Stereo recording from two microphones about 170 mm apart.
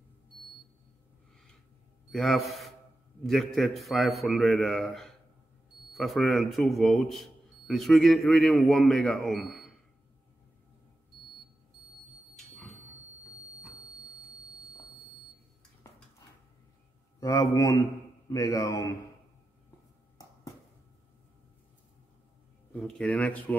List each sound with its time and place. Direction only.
2.0 s speech: centre (ahead or behind)
17.2 s a man's voice: 20° left (ahead or behind)
22.8 s speech: 5° left (ahead or behind)